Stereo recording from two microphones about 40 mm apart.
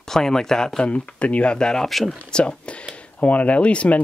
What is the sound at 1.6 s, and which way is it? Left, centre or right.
Speech, centre.